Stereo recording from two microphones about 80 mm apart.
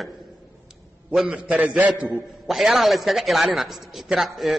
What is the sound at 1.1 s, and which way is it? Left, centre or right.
A man's voice, centre.